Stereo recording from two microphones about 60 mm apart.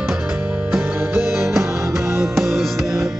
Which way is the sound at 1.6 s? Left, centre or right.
Right.